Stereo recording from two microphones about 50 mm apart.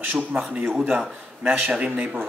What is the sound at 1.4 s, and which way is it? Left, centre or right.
Speech, right.